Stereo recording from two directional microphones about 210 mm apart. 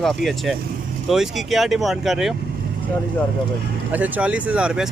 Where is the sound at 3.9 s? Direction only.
5° right (ahead or behind).